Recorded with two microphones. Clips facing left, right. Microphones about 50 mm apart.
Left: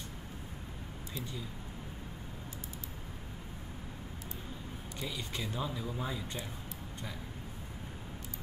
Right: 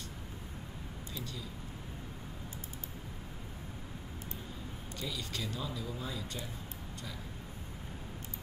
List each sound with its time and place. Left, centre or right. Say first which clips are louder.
1.1 s speech: left 2 dB; left
5.0 s speech: even; left